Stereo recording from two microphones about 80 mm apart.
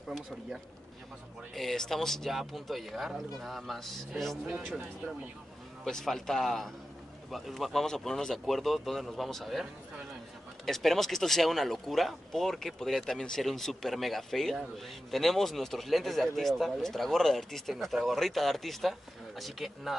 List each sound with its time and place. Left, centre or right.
1.5 s speech: centre
4.5 s speech: centre
4.7 s speech: right
5.9 s speech: centre